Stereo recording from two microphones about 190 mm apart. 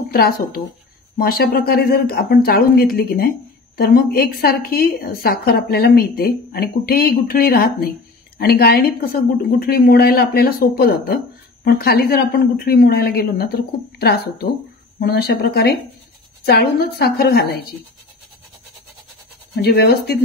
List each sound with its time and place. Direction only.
0.1 s a woman's voice: 50° left (ahead or behind)
19.5 s a woman's voice: 60° left (ahead or behind)